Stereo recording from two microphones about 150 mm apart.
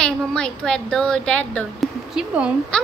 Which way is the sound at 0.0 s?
5° left (ahead or behind).